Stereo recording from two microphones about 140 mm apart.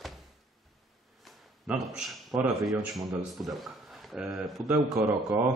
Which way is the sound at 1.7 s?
5° right (ahead or behind).